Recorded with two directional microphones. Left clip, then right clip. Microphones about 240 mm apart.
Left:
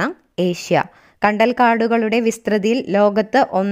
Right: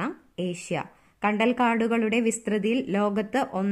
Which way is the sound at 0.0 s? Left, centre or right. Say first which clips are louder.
Left 11 dB; left.